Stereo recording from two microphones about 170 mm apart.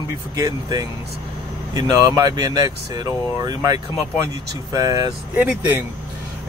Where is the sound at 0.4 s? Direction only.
20° right (ahead or behind).